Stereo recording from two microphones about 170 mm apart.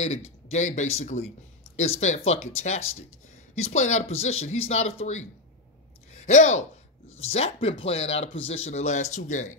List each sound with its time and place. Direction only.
0.0 s speech: 40° left (ahead or behind)